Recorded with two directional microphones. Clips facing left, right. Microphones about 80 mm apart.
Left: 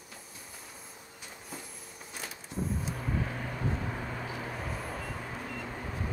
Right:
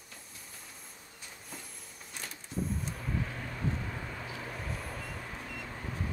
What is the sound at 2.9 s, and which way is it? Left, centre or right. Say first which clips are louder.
Vehicle: left 3 dB; left.